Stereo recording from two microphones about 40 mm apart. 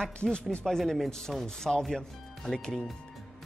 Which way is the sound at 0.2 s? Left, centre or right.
Left.